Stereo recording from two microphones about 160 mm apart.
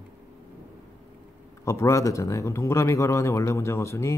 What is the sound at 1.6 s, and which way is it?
A man's voice, 20° left (ahead or behind).